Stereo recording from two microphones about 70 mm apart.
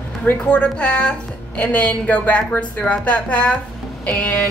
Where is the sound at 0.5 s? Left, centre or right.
Centre.